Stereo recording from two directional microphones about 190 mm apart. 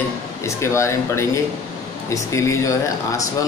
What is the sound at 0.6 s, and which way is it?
A man's voice, 15° left (ahead or behind).